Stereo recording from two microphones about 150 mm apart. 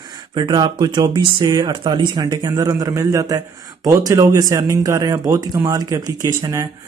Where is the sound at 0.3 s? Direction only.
30° right (ahead or behind).